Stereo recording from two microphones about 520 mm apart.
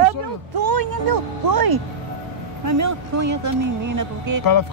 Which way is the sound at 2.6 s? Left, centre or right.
Right.